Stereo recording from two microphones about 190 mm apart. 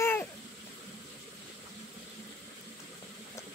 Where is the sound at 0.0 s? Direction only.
10° left (ahead or behind).